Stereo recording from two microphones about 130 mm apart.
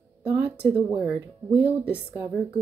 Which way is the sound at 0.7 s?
10° right (ahead or behind).